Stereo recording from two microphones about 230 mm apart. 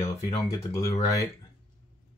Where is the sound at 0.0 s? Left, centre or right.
Centre.